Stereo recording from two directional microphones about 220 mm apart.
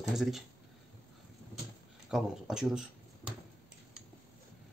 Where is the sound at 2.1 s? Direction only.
Centre (ahead or behind).